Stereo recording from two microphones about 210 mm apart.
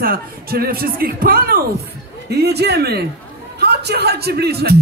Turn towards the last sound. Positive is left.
turn(degrees=-50)  # may be behind; listen again after turning